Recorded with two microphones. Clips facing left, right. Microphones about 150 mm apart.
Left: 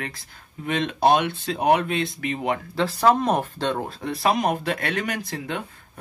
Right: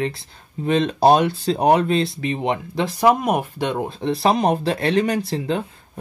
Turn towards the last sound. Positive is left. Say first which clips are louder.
# right 7 dB
turn(degrees=-30)  # may be behind; listen again after turning